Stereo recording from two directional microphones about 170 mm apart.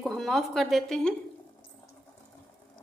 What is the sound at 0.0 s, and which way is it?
A woman's voice, centre (ahead or behind).